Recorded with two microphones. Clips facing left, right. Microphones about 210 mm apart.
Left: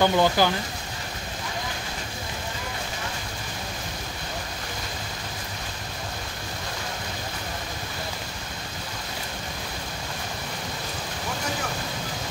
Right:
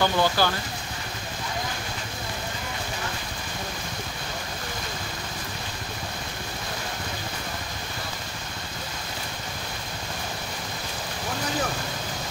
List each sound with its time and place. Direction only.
0.0 s speech: 15° left (ahead or behind)